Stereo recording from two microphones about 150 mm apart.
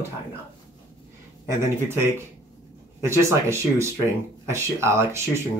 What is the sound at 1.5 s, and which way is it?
Speech, 15° right (ahead or behind).